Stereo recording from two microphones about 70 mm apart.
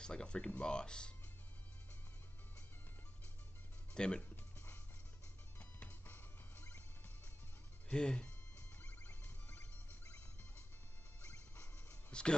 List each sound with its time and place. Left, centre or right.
0.0 s speech: centre
3.9 s speech: centre
5.6 s music: left
7.9 s speech: centre
8.8 s music: left
11.2 s music: left
12.1 s speech: centre